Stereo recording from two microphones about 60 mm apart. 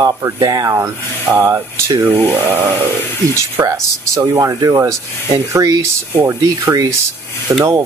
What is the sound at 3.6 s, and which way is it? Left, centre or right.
Speech, right.